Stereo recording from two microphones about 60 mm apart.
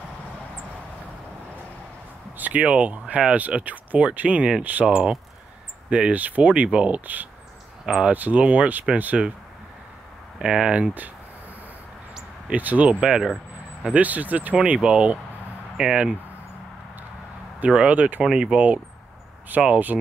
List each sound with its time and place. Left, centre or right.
2.3 s speech: right
4.9 s speech: centre
7.8 s speech: centre
8.1 s speech: right
10.4 s speech: centre
12.4 s speech: right
13.9 s speech: right
17.6 s speech: centre
18.2 s speech: centre
19.6 s speech: right